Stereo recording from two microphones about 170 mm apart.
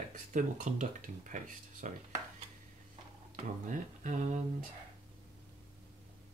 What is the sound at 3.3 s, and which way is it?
Speech, 45° right (ahead or behind).